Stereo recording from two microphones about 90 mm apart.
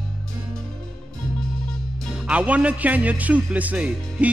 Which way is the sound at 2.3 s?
15° right (ahead or behind).